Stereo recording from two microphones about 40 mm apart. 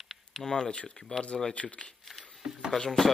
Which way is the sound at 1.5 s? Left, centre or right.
Left.